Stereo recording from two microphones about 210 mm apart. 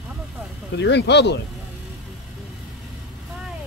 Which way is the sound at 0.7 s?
55° left (ahead or behind).